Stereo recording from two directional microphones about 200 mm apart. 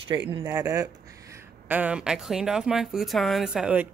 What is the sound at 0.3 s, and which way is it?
Speech, 20° right (ahead or behind).